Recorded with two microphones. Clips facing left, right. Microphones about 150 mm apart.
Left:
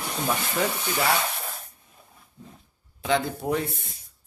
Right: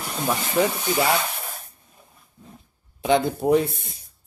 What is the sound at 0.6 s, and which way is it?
Speech, 15° right (ahead or behind).